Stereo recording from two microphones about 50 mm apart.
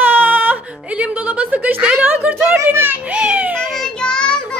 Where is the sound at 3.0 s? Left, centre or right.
Right.